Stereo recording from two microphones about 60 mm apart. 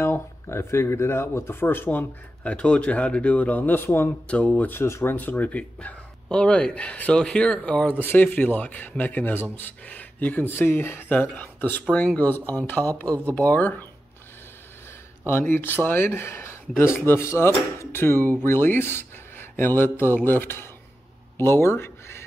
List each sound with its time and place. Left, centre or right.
0.0 s speech: left
4.3 s speech: left
4.6 s speech: left
5.1 s speech: left
8.0 s speech: left
11.1 s speech: left
15.2 s speech: left
21.4 s a sound: left